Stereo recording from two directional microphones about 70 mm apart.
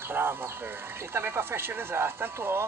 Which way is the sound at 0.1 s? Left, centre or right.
Right.